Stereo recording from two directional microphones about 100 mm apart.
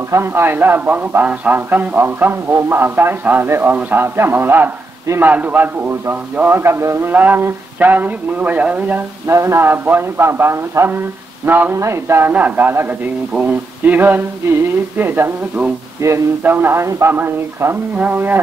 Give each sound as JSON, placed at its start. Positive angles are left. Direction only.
{"t": 0.1, "sound": "a man's voice", "side_deg": -25}
{"t": 9.3, "sound": "a man's voice", "side_deg": -30}